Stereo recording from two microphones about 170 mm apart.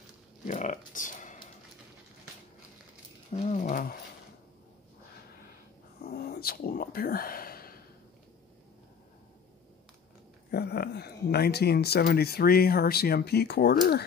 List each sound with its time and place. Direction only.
0.5 s speech: 50° left (ahead or behind)
3.4 s a sound: 45° left (ahead or behind)
6.0 s whispering: 60° left (ahead or behind)
10.5 s speech: 70° left (ahead or behind)